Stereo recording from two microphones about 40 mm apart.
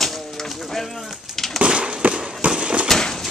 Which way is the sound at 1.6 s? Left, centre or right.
Right.